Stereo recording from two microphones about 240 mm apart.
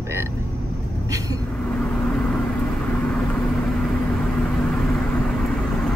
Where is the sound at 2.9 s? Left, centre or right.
Centre.